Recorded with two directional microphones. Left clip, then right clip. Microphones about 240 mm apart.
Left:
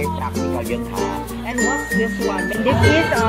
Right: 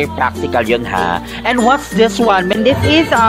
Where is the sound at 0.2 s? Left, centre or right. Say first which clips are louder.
Right 9 dB; right.